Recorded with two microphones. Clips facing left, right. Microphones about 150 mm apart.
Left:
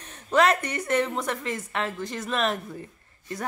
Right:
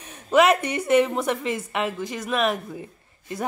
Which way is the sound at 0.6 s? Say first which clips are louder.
Right 6 dB; 15° right (ahead or behind).